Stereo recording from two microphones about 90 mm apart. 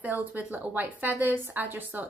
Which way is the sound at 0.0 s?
20° right (ahead or behind).